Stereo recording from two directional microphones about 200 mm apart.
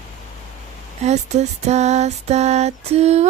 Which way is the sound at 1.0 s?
35° right (ahead or behind).